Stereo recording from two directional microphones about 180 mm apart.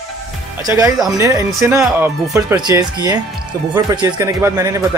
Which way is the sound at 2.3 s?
20° right (ahead or behind).